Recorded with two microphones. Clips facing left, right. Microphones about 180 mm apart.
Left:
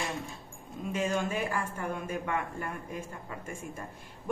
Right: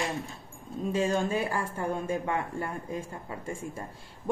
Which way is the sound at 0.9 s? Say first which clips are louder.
Right 3 dB; 30° right (ahead or behind).